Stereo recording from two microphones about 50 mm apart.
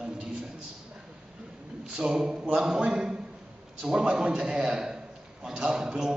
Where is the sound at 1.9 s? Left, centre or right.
Centre.